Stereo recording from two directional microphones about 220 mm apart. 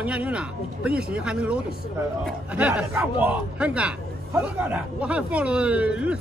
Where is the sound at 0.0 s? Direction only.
5° right (ahead or behind).